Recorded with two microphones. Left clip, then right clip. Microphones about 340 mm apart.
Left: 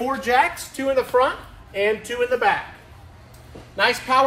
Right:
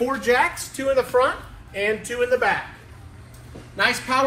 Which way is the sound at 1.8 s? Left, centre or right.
Centre.